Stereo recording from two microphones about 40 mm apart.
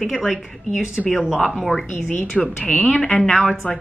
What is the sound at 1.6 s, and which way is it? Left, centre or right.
Speech, centre.